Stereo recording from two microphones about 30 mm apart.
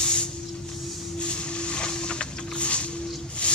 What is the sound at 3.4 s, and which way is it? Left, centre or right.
Music, left.